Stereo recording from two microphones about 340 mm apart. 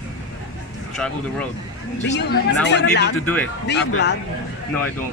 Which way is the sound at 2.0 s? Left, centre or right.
Left.